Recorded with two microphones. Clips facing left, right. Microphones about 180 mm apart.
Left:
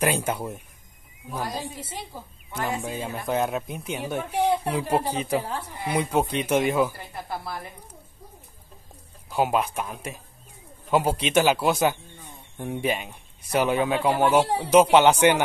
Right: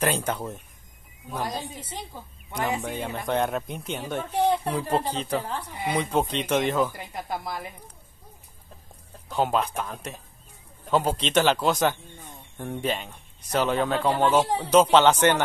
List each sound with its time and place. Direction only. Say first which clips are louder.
0.0 s speech: left 1 dB; 10° left (ahead or behind)
2.5 s speech: right 1 dB; 15° right (ahead or behind)
2.8 s speech: even; 5° left (ahead or behind)
7.0 s speech: right 1 dB; 20° right (ahead or behind)
9.3 s speech: left 1 dB; 10° left (ahead or behind)